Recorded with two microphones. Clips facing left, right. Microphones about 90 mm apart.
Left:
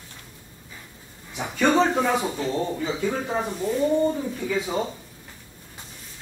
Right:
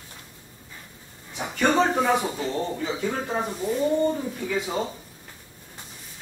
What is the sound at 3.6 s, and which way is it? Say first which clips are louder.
Speech: left 1 dB; 10° right (ahead or behind).